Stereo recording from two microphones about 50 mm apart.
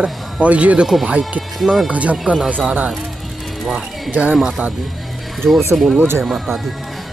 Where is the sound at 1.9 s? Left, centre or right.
Right.